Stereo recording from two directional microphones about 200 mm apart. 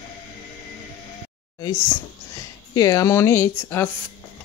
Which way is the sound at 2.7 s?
15° left (ahead or behind).